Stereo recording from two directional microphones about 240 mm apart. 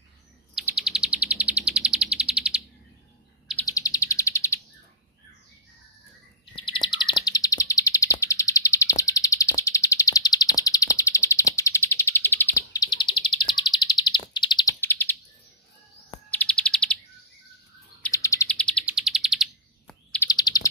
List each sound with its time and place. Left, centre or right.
0.6 s bird: centre
3.6 s bird: centre
6.5 s chirp: centre
16.3 s chirp: centre
18.0 s bird: centre
18.9 s chirp: centre
20.2 s bird: centre